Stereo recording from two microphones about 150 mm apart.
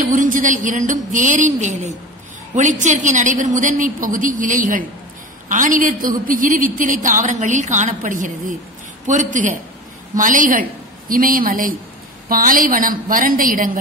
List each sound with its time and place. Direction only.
0.0 s a woman's voice: 60° right (ahead or behind)